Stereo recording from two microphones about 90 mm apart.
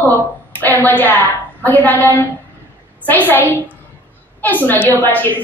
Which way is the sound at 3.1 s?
20° left (ahead or behind).